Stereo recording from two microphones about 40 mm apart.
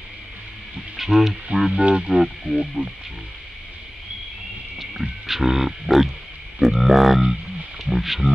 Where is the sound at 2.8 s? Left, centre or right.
Right.